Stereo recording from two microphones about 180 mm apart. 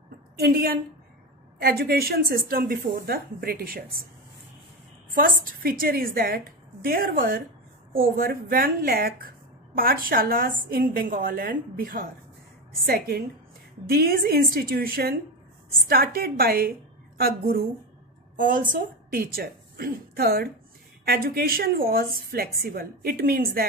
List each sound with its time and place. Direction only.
0.4 s a woman's voice: 55° right (ahead or behind)
5.1 s a woman's voice: 50° right (ahead or behind)